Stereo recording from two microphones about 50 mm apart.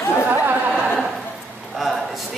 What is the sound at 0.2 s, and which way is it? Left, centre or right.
Chatter, right.